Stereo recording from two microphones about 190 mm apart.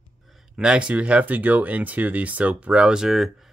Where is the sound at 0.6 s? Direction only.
5° right (ahead or behind).